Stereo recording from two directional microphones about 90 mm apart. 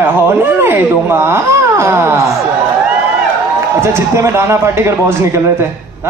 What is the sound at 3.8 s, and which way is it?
A man's voice, 30° right (ahead or behind).